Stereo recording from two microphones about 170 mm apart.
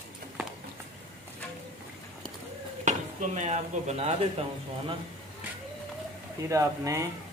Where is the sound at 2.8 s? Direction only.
45° right (ahead or behind).